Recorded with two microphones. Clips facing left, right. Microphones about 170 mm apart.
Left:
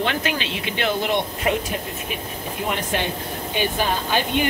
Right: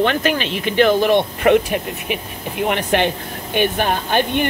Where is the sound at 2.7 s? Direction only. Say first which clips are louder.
Right 7 dB; 70° right (ahead or behind).